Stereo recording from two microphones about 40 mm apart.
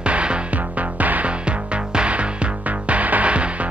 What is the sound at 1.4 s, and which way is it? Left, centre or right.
Music, right.